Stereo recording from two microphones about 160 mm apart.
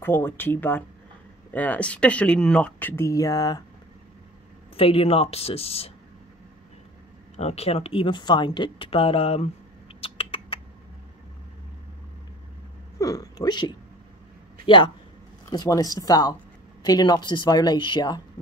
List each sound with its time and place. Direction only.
0.0 s speech: 15° left (ahead or behind)
4.7 s speech: 35° left (ahead or behind)
7.3 s speech: 40° left (ahead or behind)
9.9 s rodents: 35° left (ahead or behind)
13.0 s speech: 20° left (ahead or behind)
15.5 s speech: 25° left (ahead or behind)